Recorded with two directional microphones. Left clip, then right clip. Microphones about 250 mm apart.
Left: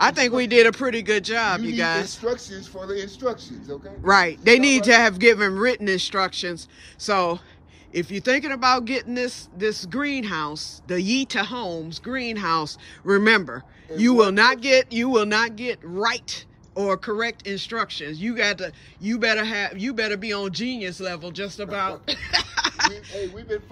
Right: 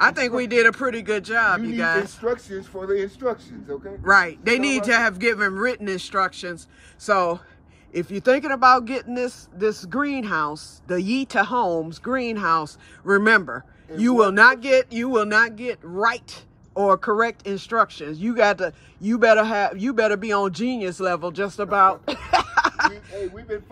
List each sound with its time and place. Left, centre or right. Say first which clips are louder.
0.0 s speech: even; centre
2.2 s speech: right 1 dB; right
4.0 s speech: even; centre